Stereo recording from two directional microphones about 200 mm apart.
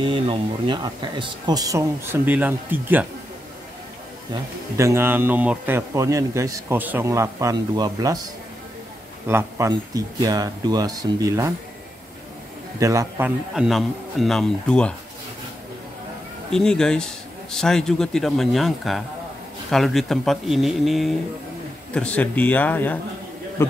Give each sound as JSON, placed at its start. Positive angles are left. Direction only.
{"t": 0.0, "sound": "a man's voice", "side_deg": -25}
{"t": 4.3, "sound": "a man's voice", "side_deg": -15}
{"t": 9.3, "sound": "speech", "side_deg": -15}
{"t": 12.7, "sound": "a man's voice", "side_deg": -15}
{"t": 13.6, "sound": "a man's voice", "side_deg": 0}
{"t": 16.5, "sound": "a man's voice", "side_deg": 5}